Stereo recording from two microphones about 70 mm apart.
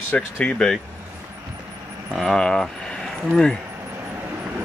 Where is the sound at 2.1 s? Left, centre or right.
Centre.